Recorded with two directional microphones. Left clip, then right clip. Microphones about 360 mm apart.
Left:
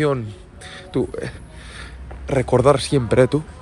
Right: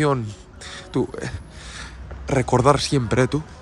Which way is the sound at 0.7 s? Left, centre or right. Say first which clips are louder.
Left 1 dB; centre.